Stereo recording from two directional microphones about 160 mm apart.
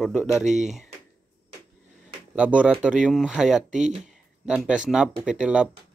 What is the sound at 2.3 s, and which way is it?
Speech, 10° right (ahead or behind).